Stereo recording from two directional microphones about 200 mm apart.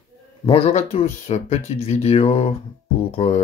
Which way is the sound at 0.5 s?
30° left (ahead or behind).